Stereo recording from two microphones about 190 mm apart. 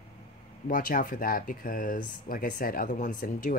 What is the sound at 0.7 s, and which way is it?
Speech, 45° left (ahead or behind).